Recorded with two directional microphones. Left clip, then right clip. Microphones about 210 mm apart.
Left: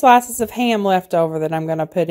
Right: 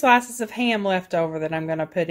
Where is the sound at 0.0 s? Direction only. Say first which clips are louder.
Left 6 dB; 40° left (ahead or behind).